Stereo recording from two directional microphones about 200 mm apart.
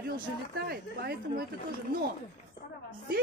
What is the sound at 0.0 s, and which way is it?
A man's voice, 50° right (ahead or behind).